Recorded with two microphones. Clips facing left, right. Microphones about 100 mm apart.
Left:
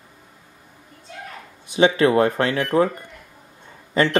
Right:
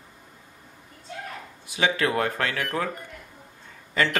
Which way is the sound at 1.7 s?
25° left (ahead or behind).